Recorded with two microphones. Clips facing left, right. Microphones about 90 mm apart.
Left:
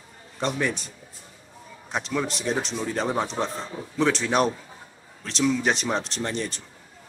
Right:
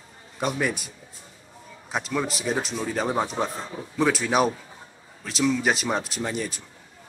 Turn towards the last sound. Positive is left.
turn(degrees=-5)  # may be behind; listen again after turning